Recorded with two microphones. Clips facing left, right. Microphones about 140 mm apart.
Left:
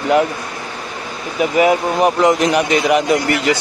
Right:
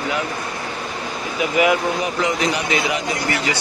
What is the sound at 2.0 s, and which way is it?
Speech, 60° left (ahead or behind).